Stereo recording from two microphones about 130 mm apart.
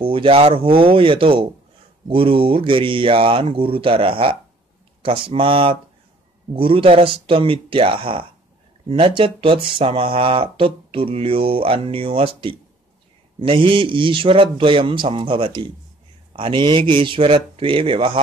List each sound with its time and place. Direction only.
0.0 s a man's voice: 45° right (ahead or behind)